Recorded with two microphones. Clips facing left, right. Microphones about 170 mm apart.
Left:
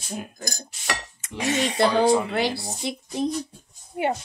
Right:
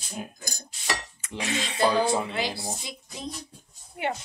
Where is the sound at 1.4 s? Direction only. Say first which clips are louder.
Left 7 dB; 40° left (ahead or behind).